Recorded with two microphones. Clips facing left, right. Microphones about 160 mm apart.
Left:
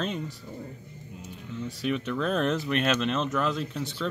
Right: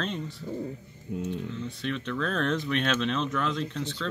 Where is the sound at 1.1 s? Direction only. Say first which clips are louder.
Right 13 dB; 65° right (ahead or behind).